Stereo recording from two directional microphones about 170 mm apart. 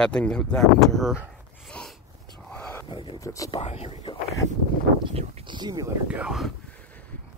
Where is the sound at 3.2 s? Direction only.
20° left (ahead or behind).